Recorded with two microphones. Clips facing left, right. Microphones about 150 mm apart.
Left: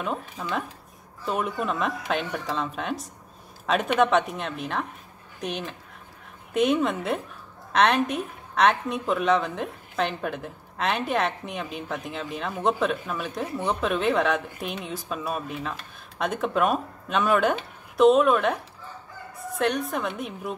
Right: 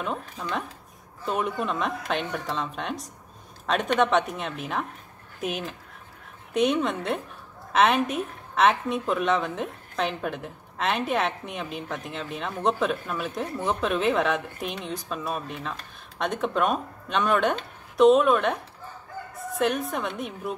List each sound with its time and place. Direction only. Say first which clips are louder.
0.0 s a woman's voice: left 1 dB; centre (ahead or behind)